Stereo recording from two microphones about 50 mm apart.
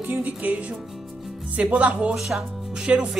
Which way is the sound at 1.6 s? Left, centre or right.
Right.